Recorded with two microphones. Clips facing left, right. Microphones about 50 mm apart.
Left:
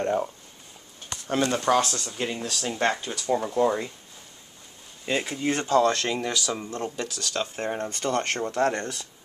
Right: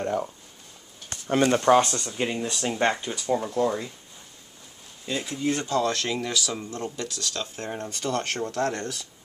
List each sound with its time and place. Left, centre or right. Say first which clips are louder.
0.0 s speech: left 2 dB; centre
1.3 s speech: right 3 dB; centre
1.7 s speech: right 4 dB; right
2.0 s speech: right 2 dB; centre
3.1 s speech: even; centre
5.0 s speech: left 1 dB; left
5.7 s speech: left 8 dB; left
6.0 s speech: left 1 dB; centre
8.1 s speech: left 2 dB; centre
8.4 s speech: left 2 dB; centre